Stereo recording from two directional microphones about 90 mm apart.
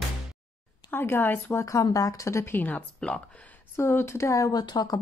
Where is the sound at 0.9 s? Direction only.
25° left (ahead or behind).